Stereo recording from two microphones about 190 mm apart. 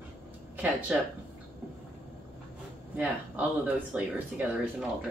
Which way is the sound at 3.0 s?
10° right (ahead or behind).